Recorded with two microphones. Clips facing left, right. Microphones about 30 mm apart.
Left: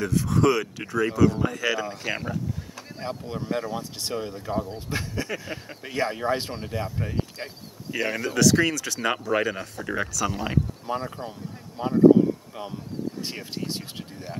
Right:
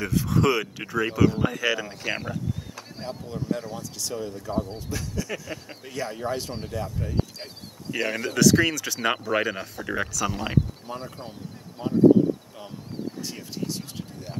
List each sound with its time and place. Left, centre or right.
0.0 s speech: centre
2.1 s a sound: centre
3.0 s speech: left
7.9 s speech: centre
10.9 s speech: left
13.2 s speech: left